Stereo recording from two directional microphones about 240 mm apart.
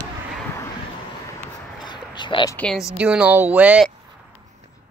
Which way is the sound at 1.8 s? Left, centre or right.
Centre.